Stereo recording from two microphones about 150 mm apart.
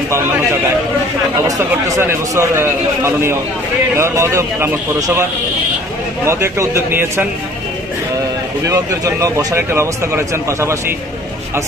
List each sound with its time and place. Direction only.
2.0 s a man's voice: 15° right (ahead or behind)
6.2 s a man's voice: 15° right (ahead or behind)
8.6 s speech: 20° right (ahead or behind)